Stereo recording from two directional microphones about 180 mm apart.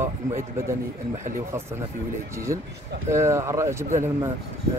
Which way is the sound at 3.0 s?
15° right (ahead or behind).